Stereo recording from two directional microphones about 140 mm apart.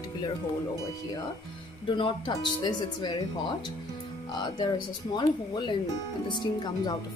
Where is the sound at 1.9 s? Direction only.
35° left (ahead or behind).